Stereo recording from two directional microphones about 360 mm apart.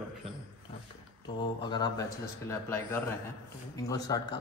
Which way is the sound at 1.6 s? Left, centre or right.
Centre.